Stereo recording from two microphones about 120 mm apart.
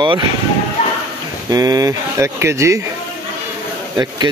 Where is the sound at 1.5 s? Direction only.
30° right (ahead or behind).